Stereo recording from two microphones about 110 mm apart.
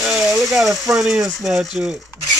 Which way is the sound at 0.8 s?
15° right (ahead or behind).